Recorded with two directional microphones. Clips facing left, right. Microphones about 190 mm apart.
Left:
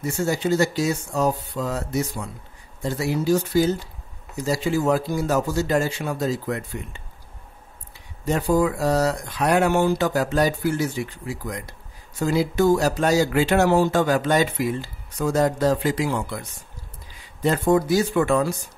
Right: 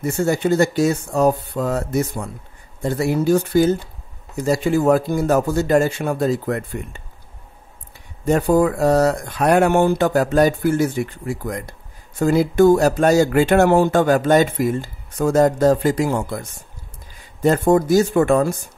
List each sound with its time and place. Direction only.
0.0 s speech: 55° right (ahead or behind)
8.3 s speech: 55° right (ahead or behind)